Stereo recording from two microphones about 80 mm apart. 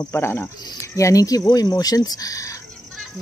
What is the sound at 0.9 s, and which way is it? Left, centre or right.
Speech, left.